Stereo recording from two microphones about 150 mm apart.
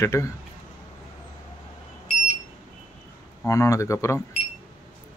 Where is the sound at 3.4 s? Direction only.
20° left (ahead or behind).